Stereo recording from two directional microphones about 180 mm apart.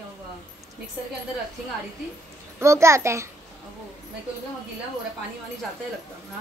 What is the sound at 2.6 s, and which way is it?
Speech, 15° right (ahead or behind).